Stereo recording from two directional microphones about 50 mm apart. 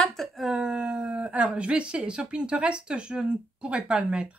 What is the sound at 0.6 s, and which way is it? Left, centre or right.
Speech, centre.